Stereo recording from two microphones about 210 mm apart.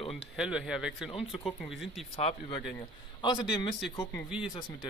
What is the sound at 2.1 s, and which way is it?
Speech, 30° left (ahead or behind).